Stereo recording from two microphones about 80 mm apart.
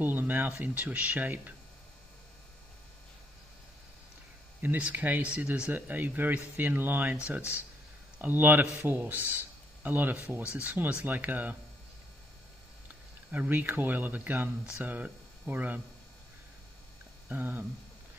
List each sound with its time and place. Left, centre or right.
0.0 s speech: right
4.6 s speech: right
13.3 s speech: right
17.3 s speech: right